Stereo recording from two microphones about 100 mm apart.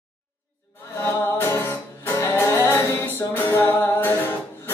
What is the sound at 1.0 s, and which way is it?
Music, 25° left (ahead or behind).